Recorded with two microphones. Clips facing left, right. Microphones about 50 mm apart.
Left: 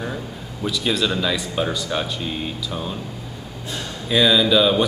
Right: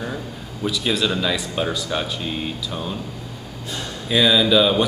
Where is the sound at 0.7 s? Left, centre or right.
Centre.